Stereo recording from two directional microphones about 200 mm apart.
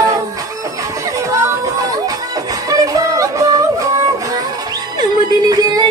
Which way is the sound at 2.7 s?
15° right (ahead or behind).